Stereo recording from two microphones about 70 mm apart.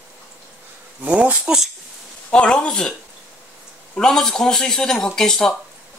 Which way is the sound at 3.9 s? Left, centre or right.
Centre.